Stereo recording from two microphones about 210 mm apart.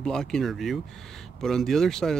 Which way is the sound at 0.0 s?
5° left (ahead or behind).